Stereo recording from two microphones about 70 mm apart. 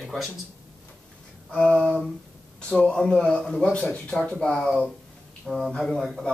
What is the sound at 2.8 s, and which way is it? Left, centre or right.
Speech, centre.